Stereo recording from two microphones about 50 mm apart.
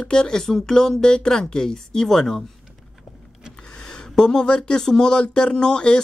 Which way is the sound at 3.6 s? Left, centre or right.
Centre.